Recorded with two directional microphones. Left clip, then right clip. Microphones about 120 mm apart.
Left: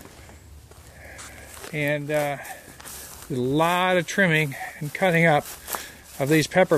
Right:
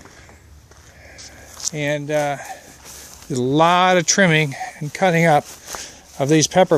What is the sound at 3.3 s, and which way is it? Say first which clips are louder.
Speech: right 7 dB; 85° right.